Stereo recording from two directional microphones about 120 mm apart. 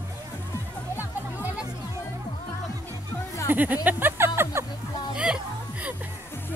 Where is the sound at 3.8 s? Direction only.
15° right (ahead or behind).